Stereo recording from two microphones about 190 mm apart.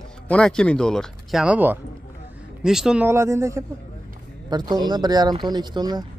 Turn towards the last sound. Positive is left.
turn(degrees=-20)  # may be behind; listen again after turning